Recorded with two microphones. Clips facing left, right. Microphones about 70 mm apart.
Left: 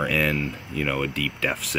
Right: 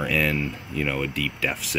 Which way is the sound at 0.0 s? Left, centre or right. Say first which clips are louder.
Even; centre.